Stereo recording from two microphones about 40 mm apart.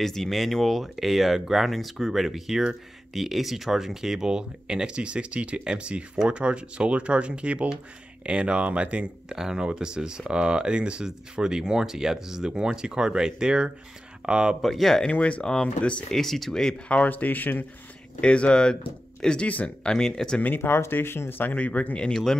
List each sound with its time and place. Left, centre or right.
0.0 s speech: centre; by 9.1 s right
9.3 s speech: centre
14.6 s speech: centre
15.1 s speech: left
15.4 s speech: left
16.1 s speech: centre
17.0 s speech: left
18.2 s speech: left
19.4 s speech: left
19.8 s speech: centre
20.5 s speech: left
21.5 s speech: left
22.1 s speech: centre